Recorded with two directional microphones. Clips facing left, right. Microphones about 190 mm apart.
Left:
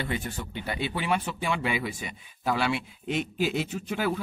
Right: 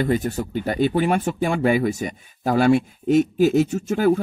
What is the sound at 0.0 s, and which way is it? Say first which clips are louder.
Speech: right 11 dB; 40° right (ahead or behind).